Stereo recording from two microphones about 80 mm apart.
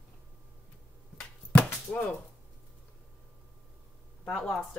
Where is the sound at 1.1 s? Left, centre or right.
Centre.